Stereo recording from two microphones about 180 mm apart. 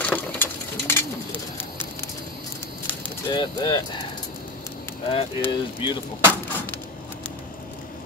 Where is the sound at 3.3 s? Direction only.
25° left (ahead or behind).